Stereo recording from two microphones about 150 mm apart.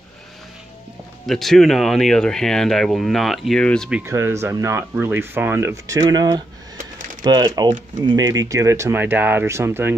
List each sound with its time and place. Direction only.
1.2 s speech: centre (ahead or behind)
4.0 s speech: 20° right (ahead or behind)